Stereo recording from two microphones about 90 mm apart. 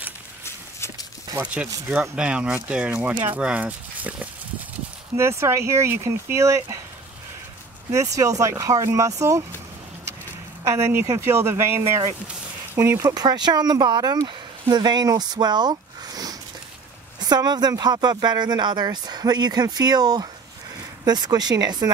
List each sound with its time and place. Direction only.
1.4 s speech: 15° right (ahead or behind)
5.1 s speech: 30° right (ahead or behind)
7.9 s speech: 35° right (ahead or behind)
10.6 s speech: 35° right (ahead or behind)
13.1 s speech: 50° right (ahead or behind)